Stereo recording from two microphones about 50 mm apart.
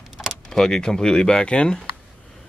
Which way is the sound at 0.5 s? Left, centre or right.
Centre.